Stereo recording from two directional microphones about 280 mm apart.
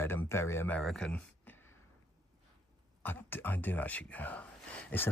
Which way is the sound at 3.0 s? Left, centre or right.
Centre.